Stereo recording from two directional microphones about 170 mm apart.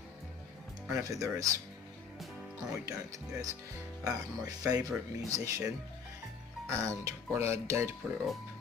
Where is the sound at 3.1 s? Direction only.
20° right (ahead or behind).